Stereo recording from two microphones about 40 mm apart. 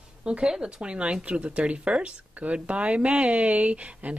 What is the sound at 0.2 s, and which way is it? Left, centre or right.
Speech, right.